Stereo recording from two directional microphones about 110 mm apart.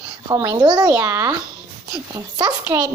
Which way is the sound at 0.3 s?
35° right (ahead or behind).